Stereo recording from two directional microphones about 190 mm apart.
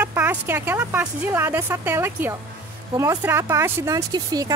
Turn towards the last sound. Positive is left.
turn(degrees=-20)  # may be behind; listen again after turning